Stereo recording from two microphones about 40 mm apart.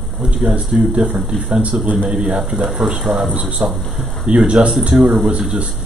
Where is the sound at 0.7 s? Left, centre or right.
Right.